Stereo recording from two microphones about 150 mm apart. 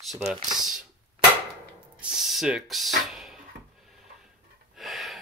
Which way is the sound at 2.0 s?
5° right (ahead or behind).